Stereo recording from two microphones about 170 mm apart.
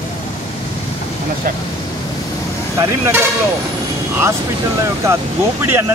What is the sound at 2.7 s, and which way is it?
Speech, 20° right (ahead or behind).